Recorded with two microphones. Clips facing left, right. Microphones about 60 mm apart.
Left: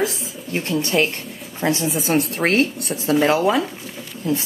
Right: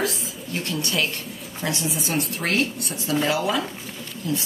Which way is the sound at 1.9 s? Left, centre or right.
Left.